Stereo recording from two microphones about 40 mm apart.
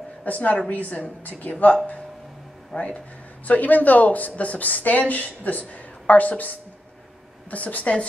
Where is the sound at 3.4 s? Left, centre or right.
Left.